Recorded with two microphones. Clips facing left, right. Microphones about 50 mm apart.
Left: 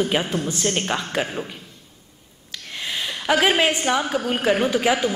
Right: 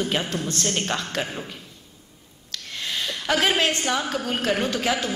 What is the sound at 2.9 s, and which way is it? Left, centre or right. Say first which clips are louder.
A woman's voice: left 3 dB; centre.